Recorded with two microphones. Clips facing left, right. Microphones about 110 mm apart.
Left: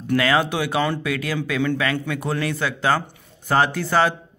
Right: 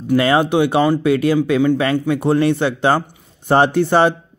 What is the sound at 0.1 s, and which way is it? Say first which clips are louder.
A man's voice: right 5 dB; 25° right (ahead or behind).